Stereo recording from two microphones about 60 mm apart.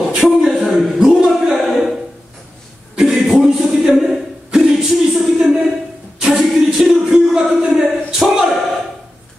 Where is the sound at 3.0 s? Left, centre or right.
Centre.